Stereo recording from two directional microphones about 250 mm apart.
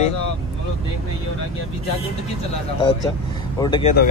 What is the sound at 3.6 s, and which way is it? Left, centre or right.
Speech, left.